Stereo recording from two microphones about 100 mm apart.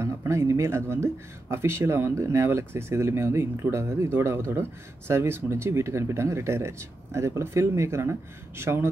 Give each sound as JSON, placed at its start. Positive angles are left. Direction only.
{"t": 0.0, "sound": "speech", "side_deg": -30}